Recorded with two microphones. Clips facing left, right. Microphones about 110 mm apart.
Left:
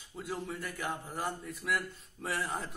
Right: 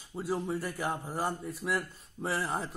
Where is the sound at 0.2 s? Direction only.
30° right (ahead or behind).